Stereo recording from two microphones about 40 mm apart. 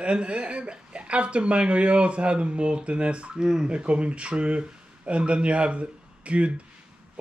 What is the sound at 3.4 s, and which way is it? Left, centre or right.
Speech, centre.